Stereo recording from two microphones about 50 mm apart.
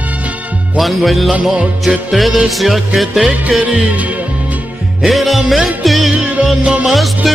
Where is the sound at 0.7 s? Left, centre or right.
Centre.